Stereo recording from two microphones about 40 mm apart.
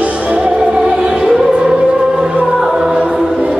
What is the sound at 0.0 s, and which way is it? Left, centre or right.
Music, right.